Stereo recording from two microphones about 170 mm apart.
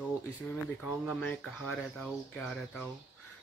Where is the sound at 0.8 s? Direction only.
Centre (ahead or behind).